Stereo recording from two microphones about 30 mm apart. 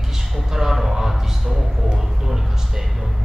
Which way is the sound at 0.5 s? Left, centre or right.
Centre.